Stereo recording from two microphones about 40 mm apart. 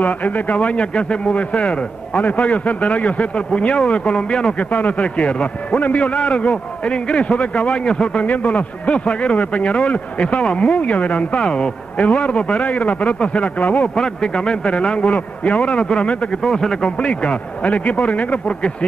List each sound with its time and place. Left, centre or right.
0.0 s speech: left
0.6 s a man's voice: left
1.6 s a man's voice: left
2.2 s a man's voice: left
4.6 s a man's voice: left
8.3 s a man's voice: left
11.4 s a man's voice: centre
12.0 s a man's voice: left
13.9 s a man's voice: centre; by 15.6 s left
15.6 s a man's voice: left
16.4 s speech: centre
17.0 s a man's voice: left